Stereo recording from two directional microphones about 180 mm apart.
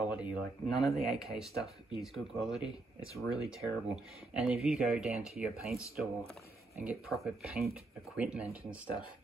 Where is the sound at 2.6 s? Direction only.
20° left (ahead or behind).